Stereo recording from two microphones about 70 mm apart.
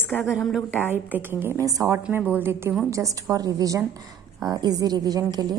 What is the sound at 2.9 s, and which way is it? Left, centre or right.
Speech, right.